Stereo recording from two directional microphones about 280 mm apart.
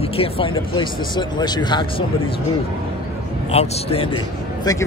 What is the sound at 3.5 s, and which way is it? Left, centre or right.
A man's voice, left.